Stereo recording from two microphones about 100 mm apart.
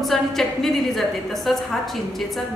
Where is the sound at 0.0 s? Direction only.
Centre (ahead or behind).